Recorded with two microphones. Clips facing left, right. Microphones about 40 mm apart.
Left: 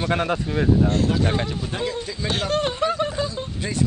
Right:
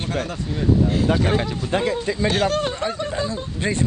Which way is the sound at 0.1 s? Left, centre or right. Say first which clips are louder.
Left 3 dB; left.